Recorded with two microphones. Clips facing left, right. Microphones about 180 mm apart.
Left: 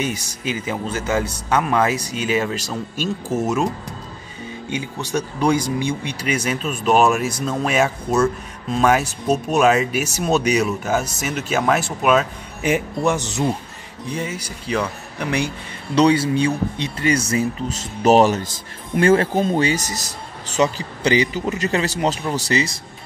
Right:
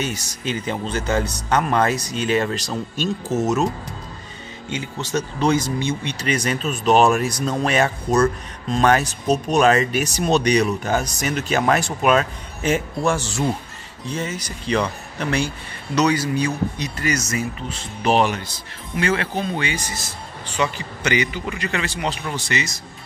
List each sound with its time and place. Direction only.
0.0 s speech: 10° left (ahead or behind)
5.0 s speech: 10° left (ahead or behind)
12.6 s speech: 15° left (ahead or behind)
15.9 s a man's voice: 30° left (ahead or behind)